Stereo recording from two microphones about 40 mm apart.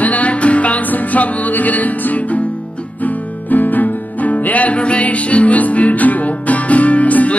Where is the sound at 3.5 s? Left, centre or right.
Left.